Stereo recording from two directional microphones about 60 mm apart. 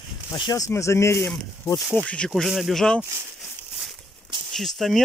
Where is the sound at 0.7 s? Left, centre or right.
Left.